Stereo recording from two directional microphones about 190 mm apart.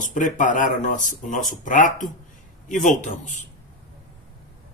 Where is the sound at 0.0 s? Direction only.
45° left (ahead or behind).